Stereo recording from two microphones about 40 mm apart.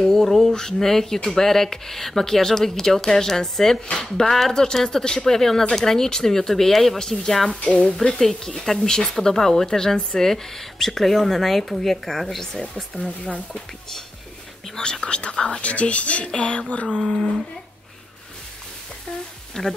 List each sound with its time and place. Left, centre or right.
0.0 s a sound: centre
0.5 s speech: centre
7.4 s speech: left
8.1 s speech: centre
13.0 s speech: left
14.8 s speech: left
17.0 s speech: centre
19.6 s speech: centre